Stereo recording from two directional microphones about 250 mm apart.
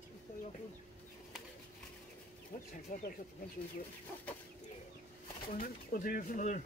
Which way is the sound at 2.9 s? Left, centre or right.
Left.